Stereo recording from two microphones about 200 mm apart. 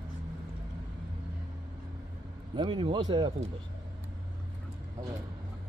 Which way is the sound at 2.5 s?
25° right (ahead or behind).